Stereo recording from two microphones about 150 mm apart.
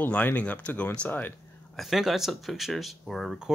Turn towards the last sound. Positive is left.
turn(degrees=0)  # may be behind; listen again after turning